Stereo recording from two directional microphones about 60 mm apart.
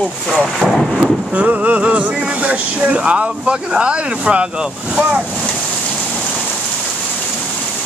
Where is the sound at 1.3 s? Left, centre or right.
Right.